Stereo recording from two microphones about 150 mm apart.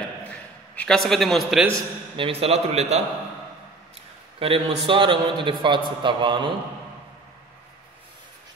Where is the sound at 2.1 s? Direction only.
40° right (ahead or behind).